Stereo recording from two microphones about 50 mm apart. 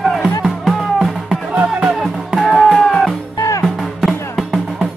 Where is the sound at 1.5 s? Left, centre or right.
Right.